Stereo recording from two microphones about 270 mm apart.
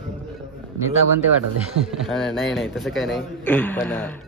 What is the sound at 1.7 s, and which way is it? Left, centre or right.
Speech, right.